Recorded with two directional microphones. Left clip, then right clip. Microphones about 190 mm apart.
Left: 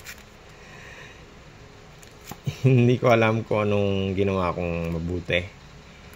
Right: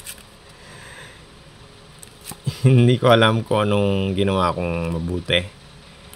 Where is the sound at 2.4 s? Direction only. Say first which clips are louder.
Right 3 dB; 25° right (ahead or behind).